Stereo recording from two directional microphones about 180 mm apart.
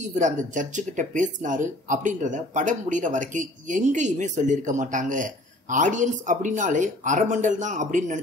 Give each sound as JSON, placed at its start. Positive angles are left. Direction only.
{"t": 0.0, "sound": "speech", "side_deg": -45}